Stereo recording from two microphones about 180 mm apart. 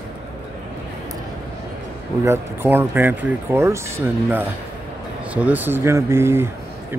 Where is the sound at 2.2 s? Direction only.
10° right (ahead or behind).